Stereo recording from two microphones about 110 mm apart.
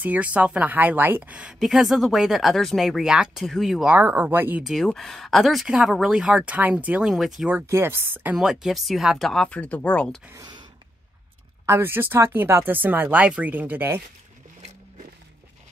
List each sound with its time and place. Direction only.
0.0 s speech: 15° right (ahead or behind)
3.9 s speech: 15° right (ahead or behind)
4.8 s speech: centre (ahead or behind)
7.4 s speech: 20° right (ahead or behind)
8.4 s speech: 5° right (ahead or behind)
10.3 s speech: 35° right (ahead or behind)
11.6 s speech: 20° right (ahead or behind)